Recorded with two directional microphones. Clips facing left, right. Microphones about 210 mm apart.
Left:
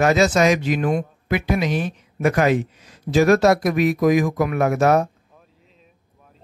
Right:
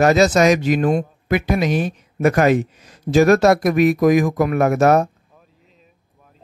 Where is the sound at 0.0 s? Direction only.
40° right (ahead or behind).